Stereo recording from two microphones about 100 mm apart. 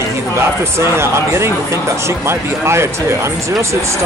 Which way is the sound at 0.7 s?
25° right (ahead or behind).